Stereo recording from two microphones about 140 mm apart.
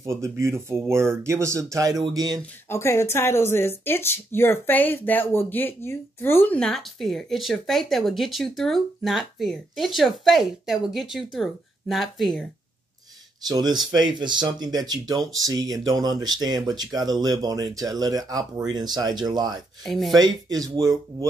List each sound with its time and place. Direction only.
0.0 s speech: 20° right (ahead or behind)
2.7 s speech: 20° left (ahead or behind); by 12.4 s centre (ahead or behind)
13.5 s speech: 30° right (ahead or behind)
19.8 s speech: centre (ahead or behind)
20.2 s speech: 30° right (ahead or behind)